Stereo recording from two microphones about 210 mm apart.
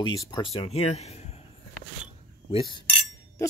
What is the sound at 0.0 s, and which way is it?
Speech, 20° left (ahead or behind).